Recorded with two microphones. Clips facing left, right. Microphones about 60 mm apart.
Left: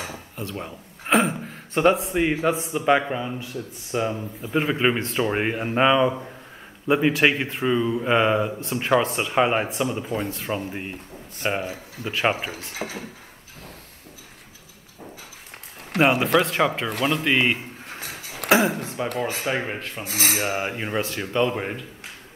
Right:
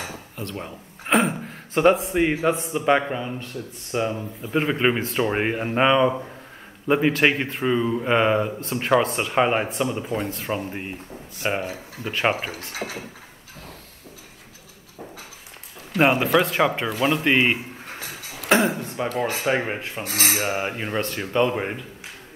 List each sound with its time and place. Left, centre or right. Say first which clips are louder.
0.4 s speech: even; centre
12.7 s speech: right 1 dB; right
16.0 s speech: even; centre
18.0 s a sound: left 1 dB; left
18.5 s speech: even; centre
20.0 s speech: right 1 dB; right
20.3 s speech: even; centre